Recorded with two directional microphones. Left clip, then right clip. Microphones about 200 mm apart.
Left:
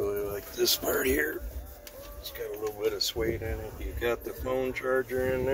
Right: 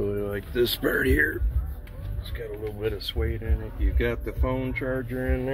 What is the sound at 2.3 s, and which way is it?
Speech, 5° left (ahead or behind).